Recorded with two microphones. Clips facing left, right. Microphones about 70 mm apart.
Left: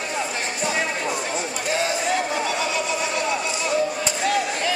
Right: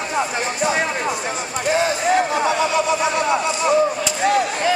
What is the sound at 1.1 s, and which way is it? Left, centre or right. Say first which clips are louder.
Speech: right 2 dB; centre.